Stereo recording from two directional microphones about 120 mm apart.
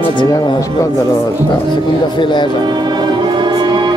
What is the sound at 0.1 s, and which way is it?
Speech, 35° left (ahead or behind).